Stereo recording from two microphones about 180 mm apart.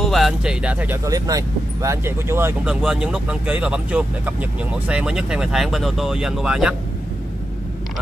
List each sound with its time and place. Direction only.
0.0 s speech: centre (ahead or behind)